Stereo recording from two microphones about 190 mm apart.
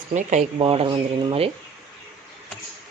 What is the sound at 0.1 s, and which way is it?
Speech, 35° right (ahead or behind).